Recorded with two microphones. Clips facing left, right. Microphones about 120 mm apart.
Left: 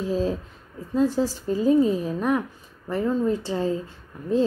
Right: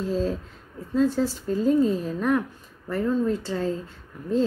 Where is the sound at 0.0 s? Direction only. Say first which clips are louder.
Left 1 dB; 10° left (ahead or behind).